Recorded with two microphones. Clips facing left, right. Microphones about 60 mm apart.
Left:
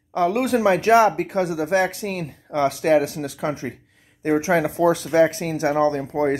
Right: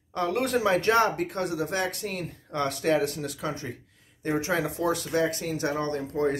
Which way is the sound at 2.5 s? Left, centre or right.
Left.